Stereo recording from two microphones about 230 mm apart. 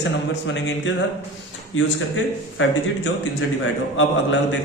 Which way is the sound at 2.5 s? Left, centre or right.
Left.